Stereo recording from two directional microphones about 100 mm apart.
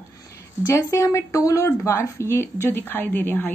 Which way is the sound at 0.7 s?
30° left (ahead or behind).